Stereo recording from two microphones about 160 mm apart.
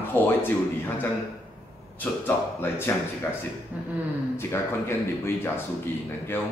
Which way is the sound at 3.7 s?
10° right (ahead or behind).